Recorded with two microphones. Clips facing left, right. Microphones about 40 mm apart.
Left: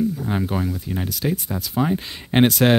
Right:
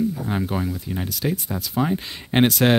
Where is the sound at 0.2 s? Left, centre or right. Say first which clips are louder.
Left 1 dB; centre.